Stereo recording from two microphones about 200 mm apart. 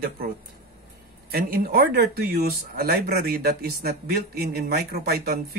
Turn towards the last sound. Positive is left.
turn(degrees=-50)  # may be behind; listen again after turning